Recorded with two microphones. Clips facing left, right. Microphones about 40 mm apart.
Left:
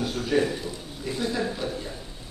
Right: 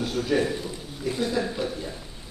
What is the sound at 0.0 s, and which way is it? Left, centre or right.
A man's voice, centre.